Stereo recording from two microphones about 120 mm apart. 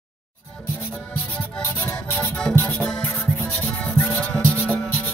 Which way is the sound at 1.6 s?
20° left (ahead or behind).